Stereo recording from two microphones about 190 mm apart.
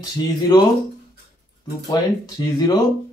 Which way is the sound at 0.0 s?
20° left (ahead or behind).